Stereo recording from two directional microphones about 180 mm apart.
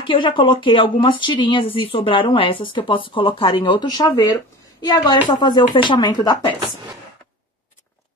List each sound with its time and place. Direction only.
0.0 s a woman's voice: 25° left (ahead or behind)